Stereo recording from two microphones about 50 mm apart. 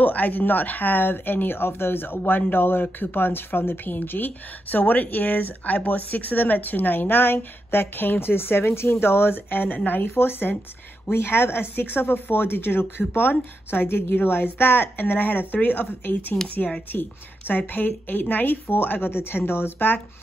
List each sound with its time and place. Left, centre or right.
0.0 s speech: left